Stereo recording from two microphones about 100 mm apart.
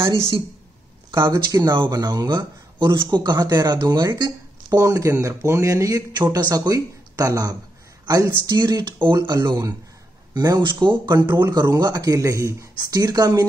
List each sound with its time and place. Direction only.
1.1 s speech: 25° right (ahead or behind)
1.6 s speech: 45° right (ahead or behind)
8.0 s a sound: 40° right (ahead or behind)
8.5 s speech: 45° right (ahead or behind)
9.5 s speech: 35° right (ahead or behind)
10.6 s speech: 50° right (ahead or behind)
11.2 s speech: 25° right (ahead or behind)
11.6 s speech: 35° right (ahead or behind)